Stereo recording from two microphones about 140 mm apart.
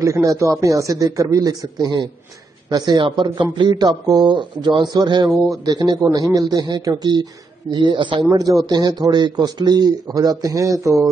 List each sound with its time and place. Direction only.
0.0 s speech: 25° right (ahead or behind)